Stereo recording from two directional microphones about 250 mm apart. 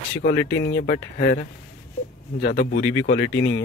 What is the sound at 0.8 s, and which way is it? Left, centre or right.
Speech, left.